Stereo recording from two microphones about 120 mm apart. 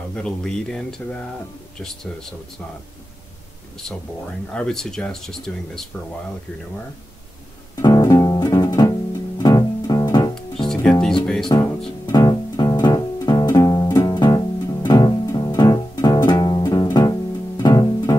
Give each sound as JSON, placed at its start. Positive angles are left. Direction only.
{"t": 0.1, "sound": "speech", "side_deg": 5}
{"t": 4.5, "sound": "speech", "side_deg": 5}
{"t": 7.8, "sound": "music", "side_deg": 35}
{"t": 10.9, "sound": "music", "side_deg": 5}
{"t": 11.5, "sound": "speech", "side_deg": 30}
{"t": 12.3, "sound": "music", "side_deg": 40}